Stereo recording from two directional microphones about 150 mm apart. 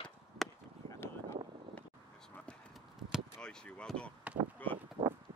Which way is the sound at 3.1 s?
5° left (ahead or behind).